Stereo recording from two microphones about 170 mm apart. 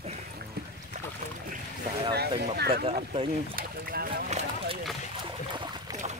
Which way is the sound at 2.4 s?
70° right (ahead or behind).